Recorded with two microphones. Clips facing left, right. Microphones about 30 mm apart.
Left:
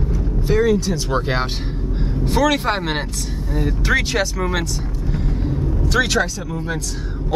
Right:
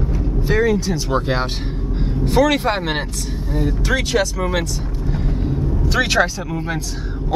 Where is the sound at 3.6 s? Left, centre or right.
Centre.